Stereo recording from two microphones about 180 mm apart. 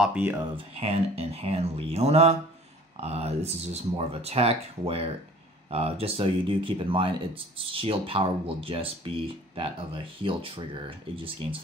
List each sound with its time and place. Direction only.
0.0 s speech: 10° right (ahead or behind)
0.6 s speech: 35° right (ahead or behind)